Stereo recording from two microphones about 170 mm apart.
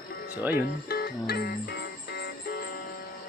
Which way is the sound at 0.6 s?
65° left (ahead or behind).